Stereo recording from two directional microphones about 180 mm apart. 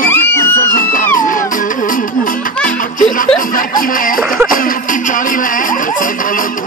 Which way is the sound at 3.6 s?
50° left (ahead or behind).